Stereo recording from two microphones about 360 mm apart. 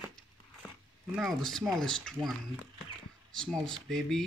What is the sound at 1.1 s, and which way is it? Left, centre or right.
Speech, centre.